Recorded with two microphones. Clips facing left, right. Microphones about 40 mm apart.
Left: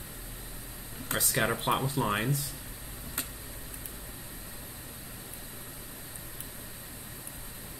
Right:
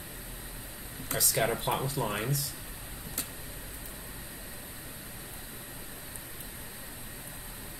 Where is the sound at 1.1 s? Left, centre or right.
Left.